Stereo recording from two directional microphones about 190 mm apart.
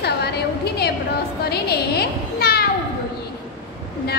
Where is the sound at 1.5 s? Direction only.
55° left (ahead or behind).